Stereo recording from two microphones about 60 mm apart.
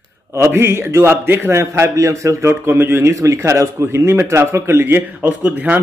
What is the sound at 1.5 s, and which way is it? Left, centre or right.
A man's voice, right.